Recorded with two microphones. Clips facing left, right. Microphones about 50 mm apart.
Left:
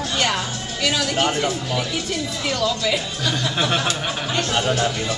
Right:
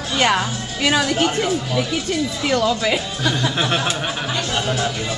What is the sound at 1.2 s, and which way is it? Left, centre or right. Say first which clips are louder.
Speech: right 2 dB; centre.